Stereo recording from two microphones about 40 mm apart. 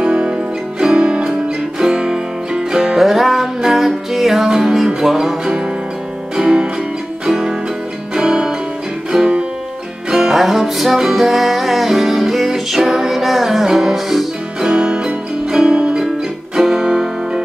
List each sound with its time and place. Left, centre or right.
0.0 s music: right
3.0 s music: centre
10.3 s music: centre
14.6 s music: right